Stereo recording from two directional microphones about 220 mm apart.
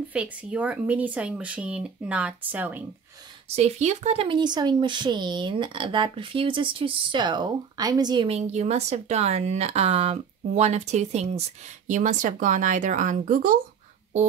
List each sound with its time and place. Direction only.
0.1 s speech: 5° right (ahead or behind)
3.4 s speech: 30° right (ahead or behind)